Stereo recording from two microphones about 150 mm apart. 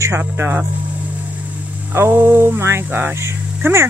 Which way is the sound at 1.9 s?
15° right (ahead or behind).